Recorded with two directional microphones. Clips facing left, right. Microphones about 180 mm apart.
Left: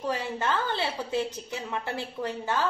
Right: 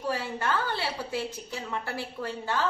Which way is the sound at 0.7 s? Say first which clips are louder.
Left 3 dB; 20° left (ahead or behind).